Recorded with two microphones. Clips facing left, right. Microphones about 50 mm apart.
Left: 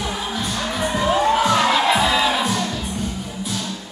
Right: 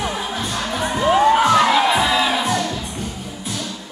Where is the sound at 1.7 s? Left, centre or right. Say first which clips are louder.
Right 1 dB; centre.